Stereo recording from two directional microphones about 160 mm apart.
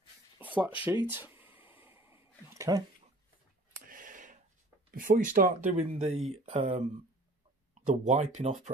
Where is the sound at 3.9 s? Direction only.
55° right (ahead or behind).